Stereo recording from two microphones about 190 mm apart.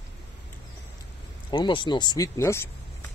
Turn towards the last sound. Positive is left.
turn(degrees=15)  # may be behind; listen again after turning